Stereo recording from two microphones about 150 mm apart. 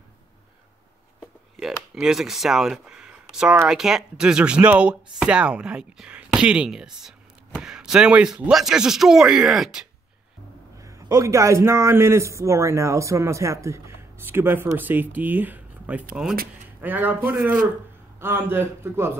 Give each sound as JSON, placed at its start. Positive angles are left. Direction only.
{"t": 1.6, "sound": "speech", "side_deg": -5}
{"t": 3.6, "sound": "chopping", "side_deg": -5}
{"t": 10.8, "sound": "a man's voice", "side_deg": -20}